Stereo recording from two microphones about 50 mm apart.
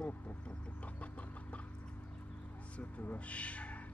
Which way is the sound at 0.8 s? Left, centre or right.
Left.